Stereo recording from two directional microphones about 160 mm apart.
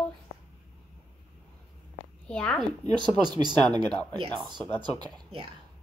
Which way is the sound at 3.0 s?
25° right (ahead or behind).